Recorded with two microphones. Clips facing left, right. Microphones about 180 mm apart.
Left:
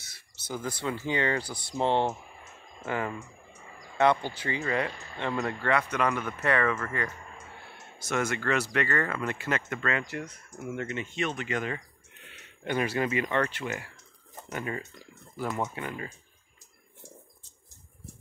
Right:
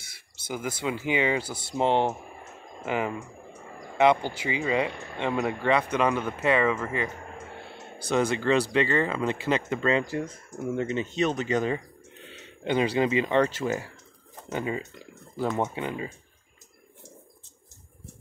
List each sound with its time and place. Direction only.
0.0 s speech: 10° right (ahead or behind)
5.9 s speech: 25° right (ahead or behind)
8.0 s speech: 30° right (ahead or behind)
12.3 s speech: 25° right (ahead or behind)